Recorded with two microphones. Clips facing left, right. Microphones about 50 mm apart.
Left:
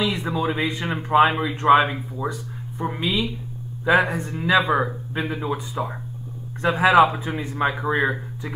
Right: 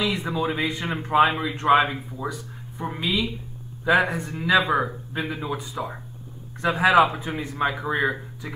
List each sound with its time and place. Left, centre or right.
0.1 s speech: centre
0.6 s speech: centre
4.1 s speech: centre
4.4 s speech: centre
5.1 s speech: centre
6.7 s speech: centre
7.2 s a man's voice: centre